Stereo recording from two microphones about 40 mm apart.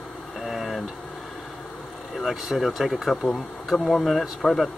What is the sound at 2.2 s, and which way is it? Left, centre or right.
Speech, centre.